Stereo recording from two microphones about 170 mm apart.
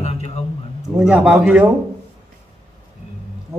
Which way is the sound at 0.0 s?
40° left (ahead or behind).